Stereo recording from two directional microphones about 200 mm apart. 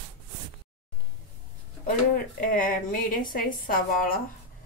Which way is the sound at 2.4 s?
45° left (ahead or behind).